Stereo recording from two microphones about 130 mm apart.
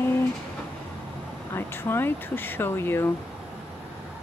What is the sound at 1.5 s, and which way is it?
Speech, 15° left (ahead or behind).